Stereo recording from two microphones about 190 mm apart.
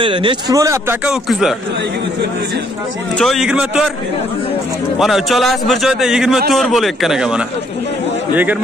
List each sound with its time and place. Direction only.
0.0 s speech: 25° right (ahead or behind)
1.0 s a man's voice: centre (ahead or behind)
3.2 s a man's voice: centre (ahead or behind)
4.9 s a man's voice: centre (ahead or behind)